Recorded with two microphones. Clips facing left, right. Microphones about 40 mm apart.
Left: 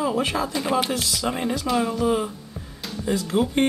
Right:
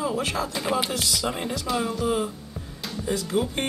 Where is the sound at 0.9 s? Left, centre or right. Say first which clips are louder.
Left 2 dB; centre.